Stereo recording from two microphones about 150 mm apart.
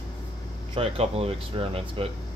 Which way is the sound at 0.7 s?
40° right (ahead or behind).